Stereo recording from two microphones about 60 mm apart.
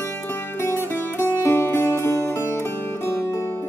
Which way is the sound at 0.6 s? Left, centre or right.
Left.